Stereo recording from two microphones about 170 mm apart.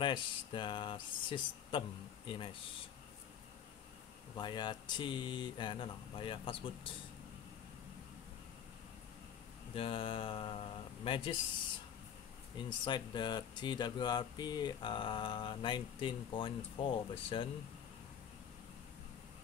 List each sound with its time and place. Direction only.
0.0 s speech: 30° left (ahead or behind)
4.4 s speech: 25° left (ahead or behind)
9.8 s speech: 35° left (ahead or behind)
12.5 s speech: 30° left (ahead or behind)